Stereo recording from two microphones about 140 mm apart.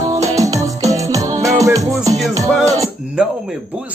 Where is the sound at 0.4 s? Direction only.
25° right (ahead or behind).